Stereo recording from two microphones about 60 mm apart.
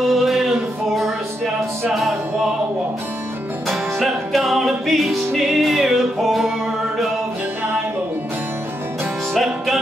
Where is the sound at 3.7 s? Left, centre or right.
Centre.